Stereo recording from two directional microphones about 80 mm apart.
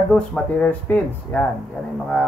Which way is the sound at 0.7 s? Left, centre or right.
Left.